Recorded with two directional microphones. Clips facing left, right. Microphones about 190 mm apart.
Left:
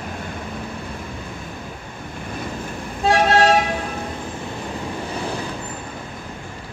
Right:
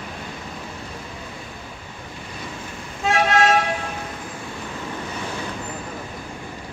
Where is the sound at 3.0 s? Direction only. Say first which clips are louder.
Left 3 dB; 35° left (ahead or behind).